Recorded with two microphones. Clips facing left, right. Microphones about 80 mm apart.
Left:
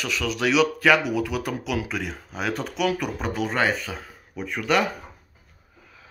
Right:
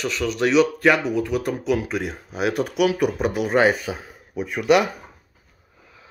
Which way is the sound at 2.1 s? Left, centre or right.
Centre.